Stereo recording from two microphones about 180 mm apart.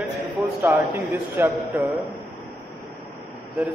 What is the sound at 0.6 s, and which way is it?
A man's voice, 10° right (ahead or behind).